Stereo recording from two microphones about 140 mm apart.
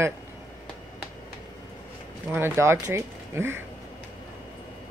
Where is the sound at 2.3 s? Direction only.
15° right (ahead or behind).